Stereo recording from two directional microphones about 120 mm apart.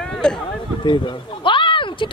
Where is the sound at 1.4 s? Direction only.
45° left (ahead or behind).